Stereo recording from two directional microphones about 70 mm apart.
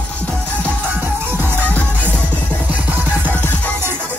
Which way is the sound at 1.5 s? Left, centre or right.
Left.